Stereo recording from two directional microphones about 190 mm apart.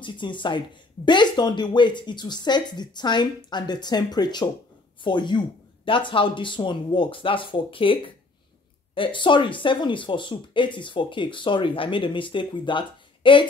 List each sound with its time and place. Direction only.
0.0 s speech: 25° left (ahead or behind)